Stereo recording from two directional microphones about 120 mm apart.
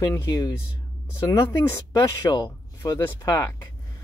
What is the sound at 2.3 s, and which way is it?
Speech, 35° left (ahead or behind).